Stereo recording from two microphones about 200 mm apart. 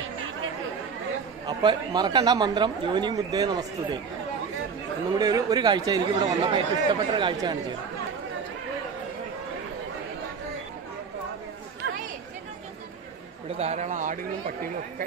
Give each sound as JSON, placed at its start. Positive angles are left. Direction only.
{"t": 1.4, "sound": "speech", "side_deg": -20}
{"t": 5.1, "sound": "speech", "side_deg": -20}
{"t": 13.6, "sound": "speech", "side_deg": -35}